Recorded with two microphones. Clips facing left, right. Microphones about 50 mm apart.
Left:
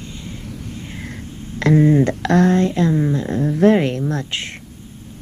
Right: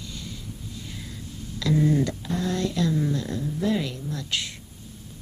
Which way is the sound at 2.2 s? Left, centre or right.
Left.